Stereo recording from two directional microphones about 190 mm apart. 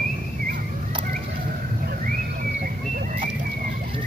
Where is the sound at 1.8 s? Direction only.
50° right (ahead or behind).